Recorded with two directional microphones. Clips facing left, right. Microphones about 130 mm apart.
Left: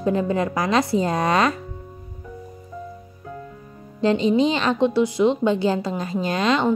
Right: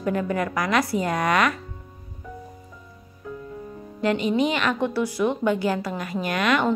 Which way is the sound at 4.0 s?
30° left (ahead or behind).